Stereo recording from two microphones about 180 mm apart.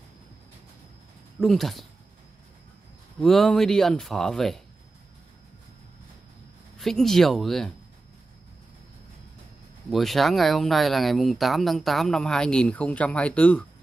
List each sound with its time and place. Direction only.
1.4 s speech: centre (ahead or behind)
3.2 s speech: centre (ahead or behind)
6.8 s speech: centre (ahead or behind)
9.8 s speech: centre (ahead or behind)